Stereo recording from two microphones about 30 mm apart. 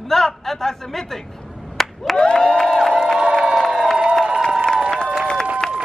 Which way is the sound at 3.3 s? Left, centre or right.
Right.